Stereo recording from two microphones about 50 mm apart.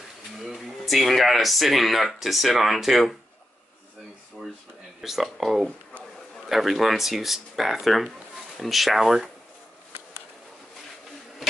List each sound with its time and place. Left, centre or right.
0.4 s speech: centre
4.4 s a sound: centre
5.0 s speech: centre